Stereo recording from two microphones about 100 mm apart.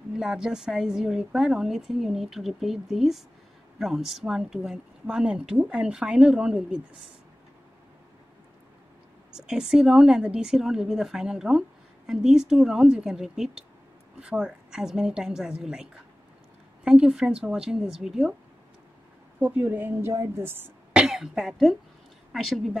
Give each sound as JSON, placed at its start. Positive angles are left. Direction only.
{"t": 0.2, "sound": "a woman's voice", "side_deg": -5}
{"t": 9.3, "sound": "a woman's voice", "side_deg": -5}
{"t": 19.4, "sound": "a woman's voice", "side_deg": -20}
{"t": 20.9, "sound": "a woman's voice", "side_deg": -5}